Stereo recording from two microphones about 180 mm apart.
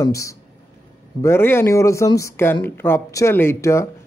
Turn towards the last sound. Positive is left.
turn(degrees=15)  # may be behind; listen again after turning